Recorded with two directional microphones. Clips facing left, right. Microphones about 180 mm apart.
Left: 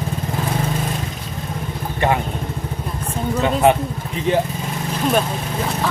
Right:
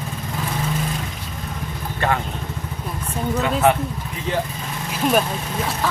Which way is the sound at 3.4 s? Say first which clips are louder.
Left 3 dB; 20° left (ahead or behind).